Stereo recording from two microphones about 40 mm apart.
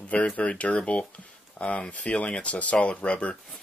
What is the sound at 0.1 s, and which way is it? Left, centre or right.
Speech, left.